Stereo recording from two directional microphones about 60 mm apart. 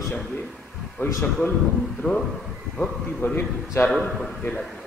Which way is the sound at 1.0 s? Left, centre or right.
Left.